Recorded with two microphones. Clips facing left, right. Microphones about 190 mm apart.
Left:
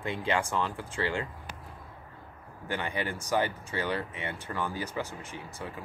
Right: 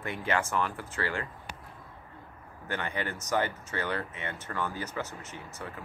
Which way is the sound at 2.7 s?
15° left (ahead or behind).